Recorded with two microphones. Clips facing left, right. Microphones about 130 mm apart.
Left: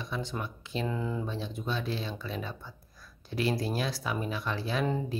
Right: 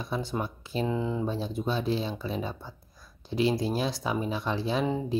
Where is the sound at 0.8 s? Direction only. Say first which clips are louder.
Right 4 dB; 25° right (ahead or behind).